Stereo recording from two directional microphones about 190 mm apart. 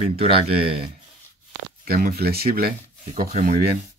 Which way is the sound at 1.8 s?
50° right (ahead or behind).